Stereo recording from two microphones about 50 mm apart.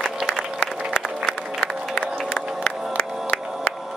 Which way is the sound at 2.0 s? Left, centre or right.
Left.